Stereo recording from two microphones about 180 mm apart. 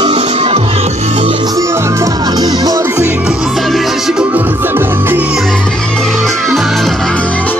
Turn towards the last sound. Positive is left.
turn(degrees=10)  # may be behind; listen again after turning